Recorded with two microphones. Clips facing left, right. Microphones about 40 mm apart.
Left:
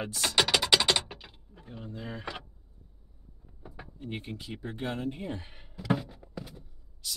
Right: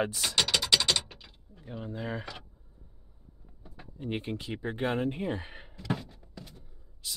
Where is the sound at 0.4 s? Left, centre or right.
Centre.